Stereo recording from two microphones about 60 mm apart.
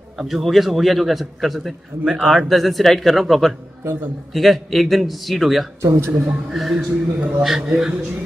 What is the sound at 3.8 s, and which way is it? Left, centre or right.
Speech, right.